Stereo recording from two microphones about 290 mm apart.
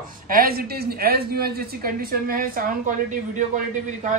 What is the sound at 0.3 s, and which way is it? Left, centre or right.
Speech, right.